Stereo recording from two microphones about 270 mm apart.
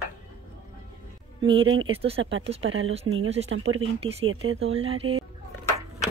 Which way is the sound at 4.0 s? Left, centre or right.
Right.